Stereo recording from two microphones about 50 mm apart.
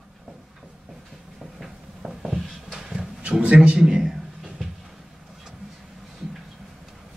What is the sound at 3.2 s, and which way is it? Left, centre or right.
A man's voice, right.